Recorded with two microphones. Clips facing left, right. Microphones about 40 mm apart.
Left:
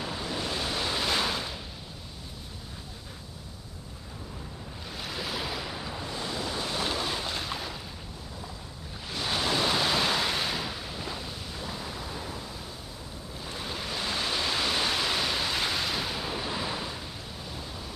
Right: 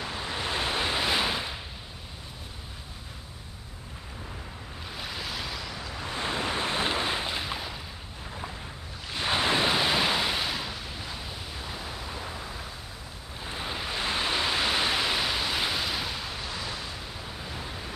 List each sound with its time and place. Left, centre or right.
0.2 s waves: right
4.9 s waves: centre
6.0 s waves: right; by 7.8 s centre
9.1 s waves: right; by 11.1 s centre
13.4 s pink noise: right; by 16.8 s centre
17.4 s pink noise: right